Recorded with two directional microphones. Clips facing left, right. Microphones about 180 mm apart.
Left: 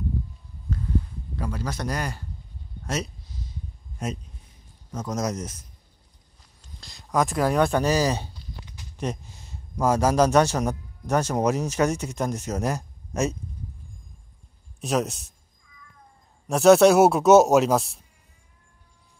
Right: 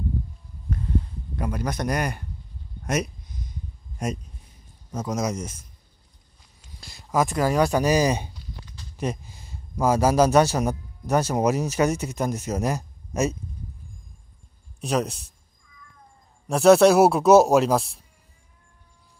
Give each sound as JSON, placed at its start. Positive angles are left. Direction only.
{"t": 1.4, "sound": "speech", "side_deg": -20}
{"t": 4.9, "sound": "speech", "side_deg": -10}
{"t": 6.6, "sound": "speech", "side_deg": -5}
{"t": 8.9, "sound": "speech", "side_deg": 0}
{"t": 14.8, "sound": "a man's voice", "side_deg": 0}
{"t": 16.4, "sound": "a man's voice", "side_deg": 0}